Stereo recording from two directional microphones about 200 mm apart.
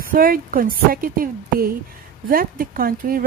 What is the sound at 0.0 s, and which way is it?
A woman's voice, 45° right (ahead or behind).